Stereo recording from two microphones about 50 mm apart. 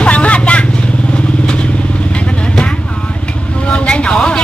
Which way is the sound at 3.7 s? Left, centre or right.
Left.